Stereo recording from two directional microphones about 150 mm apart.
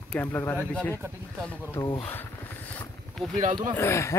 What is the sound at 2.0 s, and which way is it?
Speech, 15° left (ahead or behind).